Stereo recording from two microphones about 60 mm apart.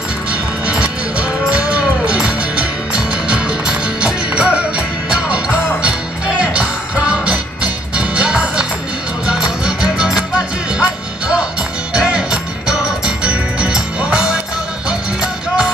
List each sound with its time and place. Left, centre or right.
0.3 s music: centre